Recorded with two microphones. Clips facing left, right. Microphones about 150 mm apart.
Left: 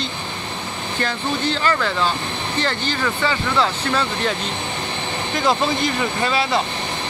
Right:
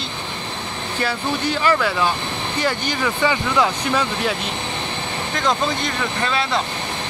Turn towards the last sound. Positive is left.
turn(degrees=5)  # may be behind; listen again after turning